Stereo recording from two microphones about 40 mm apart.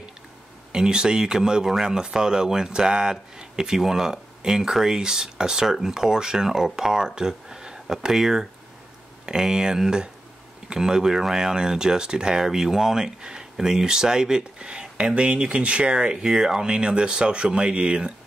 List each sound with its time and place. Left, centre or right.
0.7 s speech: centre